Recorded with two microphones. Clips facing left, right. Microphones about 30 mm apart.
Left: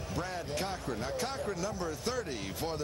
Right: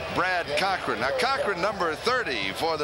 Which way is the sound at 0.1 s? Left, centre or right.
Right.